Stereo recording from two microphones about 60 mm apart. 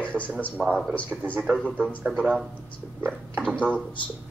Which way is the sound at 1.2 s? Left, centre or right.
Right.